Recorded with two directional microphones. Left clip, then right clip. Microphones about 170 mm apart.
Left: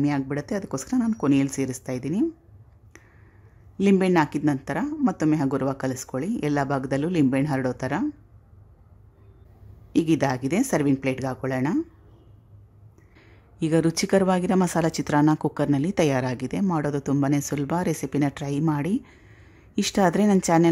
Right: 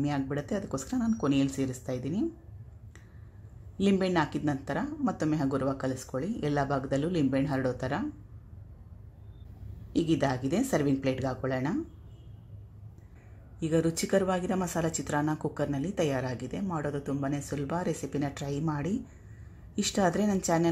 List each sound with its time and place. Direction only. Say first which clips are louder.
0.0 s a woman's voice: left 6 dB; 25° left (ahead or behind)
3.7 s a woman's voice: left 7 dB; 25° left (ahead or behind)
9.9 s a woman's voice: left 6 dB; 25° left (ahead or behind)
13.6 s a woman's voice: left 6 dB; 25° left (ahead or behind)